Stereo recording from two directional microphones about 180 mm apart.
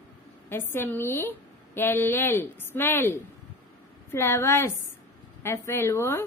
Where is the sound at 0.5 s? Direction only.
15° left (ahead or behind).